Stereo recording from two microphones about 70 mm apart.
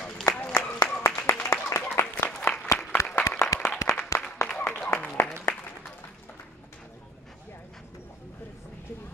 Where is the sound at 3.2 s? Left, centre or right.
Left.